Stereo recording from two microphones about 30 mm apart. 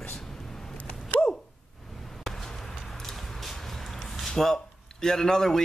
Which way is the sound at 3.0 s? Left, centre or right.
Centre.